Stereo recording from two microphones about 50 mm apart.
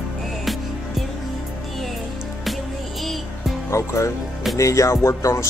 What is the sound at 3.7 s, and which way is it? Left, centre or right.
Speech, left.